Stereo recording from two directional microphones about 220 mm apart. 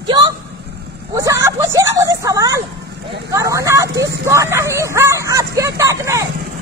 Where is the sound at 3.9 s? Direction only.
50° right (ahead or behind).